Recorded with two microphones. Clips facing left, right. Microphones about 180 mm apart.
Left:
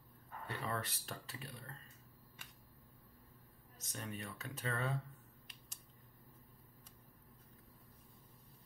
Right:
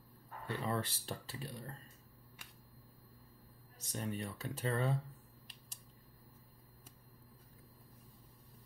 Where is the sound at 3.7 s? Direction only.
35° right (ahead or behind).